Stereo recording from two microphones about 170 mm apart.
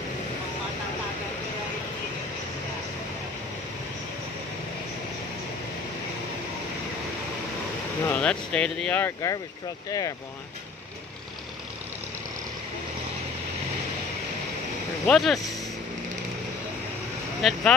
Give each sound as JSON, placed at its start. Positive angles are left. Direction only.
{"t": 8.1, "sound": "speech", "side_deg": 5}
{"t": 15.0, "sound": "speech", "side_deg": 0}
{"t": 17.4, "sound": "speech", "side_deg": 0}